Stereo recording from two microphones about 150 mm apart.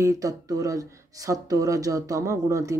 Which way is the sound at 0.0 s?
25° right (ahead or behind).